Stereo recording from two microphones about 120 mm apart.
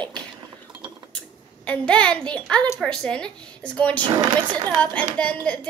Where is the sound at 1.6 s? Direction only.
10° left (ahead or behind).